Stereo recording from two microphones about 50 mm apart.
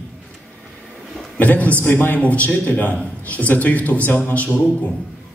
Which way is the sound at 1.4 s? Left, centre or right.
Left.